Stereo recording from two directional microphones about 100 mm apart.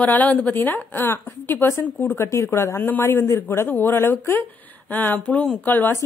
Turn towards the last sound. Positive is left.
turn(degrees=20)  # may be behind; listen again after turning